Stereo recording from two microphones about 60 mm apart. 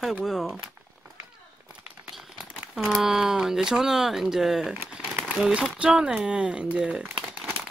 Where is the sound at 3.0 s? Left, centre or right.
Centre.